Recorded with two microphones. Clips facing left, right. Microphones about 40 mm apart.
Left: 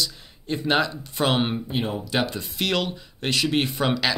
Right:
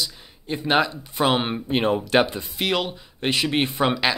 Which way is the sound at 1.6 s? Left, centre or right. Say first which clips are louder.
Right 6 dB; right.